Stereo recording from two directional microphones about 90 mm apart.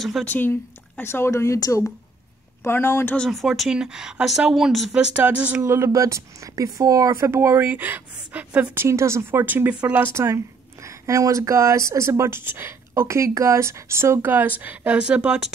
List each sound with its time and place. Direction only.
0.3 s speech: 20° left (ahead or behind)
3.3 s a woman's voice: centre (ahead or behind)
4.9 s speech: 15° right (ahead or behind)
5.7 s speech: 30° right (ahead or behind)
8.8 s speech: 30° right (ahead or behind); by 10.0 s 15° right (ahead or behind)
10.1 s speech: 30° right (ahead or behind); by 15.5 s 10° right (ahead or behind)